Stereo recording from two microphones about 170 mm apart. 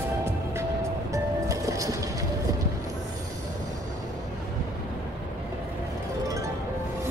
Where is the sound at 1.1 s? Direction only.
20° right (ahead or behind).